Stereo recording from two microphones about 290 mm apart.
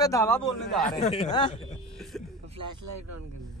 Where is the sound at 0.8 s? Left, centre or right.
Left.